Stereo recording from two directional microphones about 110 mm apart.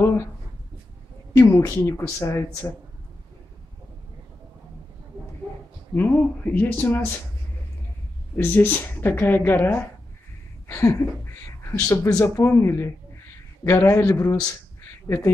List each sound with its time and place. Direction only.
1.3 s a woman's voice: 25° left (ahead or behind)
5.9 s speech: 15° left (ahead or behind)
8.4 s a woman's voice: 20° left (ahead or behind)